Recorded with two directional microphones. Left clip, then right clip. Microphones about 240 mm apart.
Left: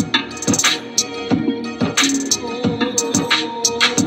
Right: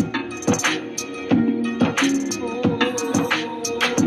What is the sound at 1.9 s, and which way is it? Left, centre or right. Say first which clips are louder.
Music: left 4 dB; left.